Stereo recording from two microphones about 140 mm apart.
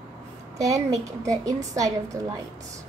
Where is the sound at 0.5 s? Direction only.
25° right (ahead or behind).